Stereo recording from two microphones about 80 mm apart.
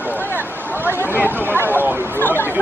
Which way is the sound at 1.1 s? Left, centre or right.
Right.